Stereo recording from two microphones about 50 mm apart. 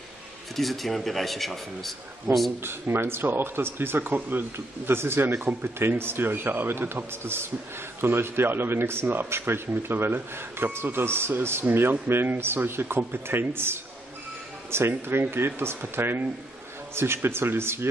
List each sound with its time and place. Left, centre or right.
0.6 s speech: centre
2.6 s speech: right